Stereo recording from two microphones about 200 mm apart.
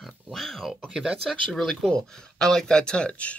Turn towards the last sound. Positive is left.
turn(degrees=5)  # may be behind; listen again after turning